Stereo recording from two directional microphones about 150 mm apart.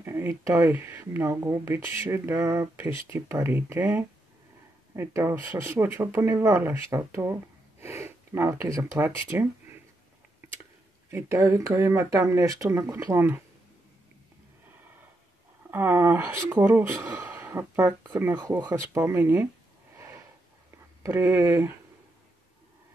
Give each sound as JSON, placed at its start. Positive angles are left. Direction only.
{"t": 0.0, "sound": "speech", "side_deg": -15}
{"t": 11.1, "sound": "speech", "side_deg": -20}
{"t": 15.7, "sound": "speech", "side_deg": -15}
{"t": 21.0, "sound": "speech", "side_deg": -20}